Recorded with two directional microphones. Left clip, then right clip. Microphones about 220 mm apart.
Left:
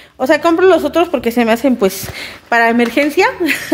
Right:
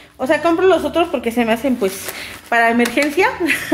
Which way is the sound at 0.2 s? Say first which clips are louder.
Left 4 dB; 35° left (ahead or behind).